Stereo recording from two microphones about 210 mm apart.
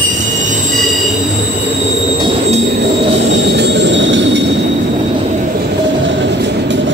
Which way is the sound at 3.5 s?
55° right (ahead or behind).